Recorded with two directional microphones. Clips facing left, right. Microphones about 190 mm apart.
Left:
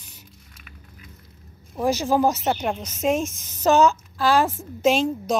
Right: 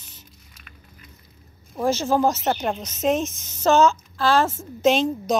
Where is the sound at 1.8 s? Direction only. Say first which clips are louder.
Even; 15° left (ahead or behind).